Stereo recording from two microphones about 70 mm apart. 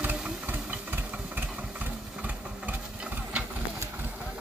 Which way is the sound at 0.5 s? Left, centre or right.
Right.